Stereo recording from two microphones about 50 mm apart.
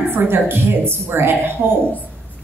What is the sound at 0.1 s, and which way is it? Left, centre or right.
A woman's voice, right.